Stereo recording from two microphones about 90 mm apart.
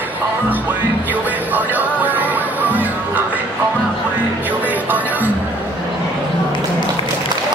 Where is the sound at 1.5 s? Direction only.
20° right (ahead or behind).